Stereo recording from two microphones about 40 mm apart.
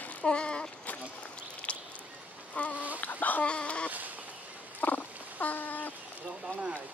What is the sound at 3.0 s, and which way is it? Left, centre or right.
Chicken, left.